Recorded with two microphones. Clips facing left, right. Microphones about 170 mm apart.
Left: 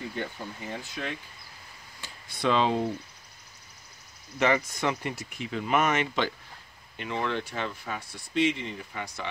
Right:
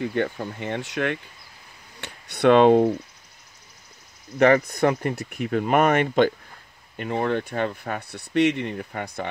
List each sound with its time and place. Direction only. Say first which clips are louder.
0.0 s speech: right 10 dB; 65° right (ahead or behind)
4.4 s speech: right 8 dB; 55° right (ahead or behind)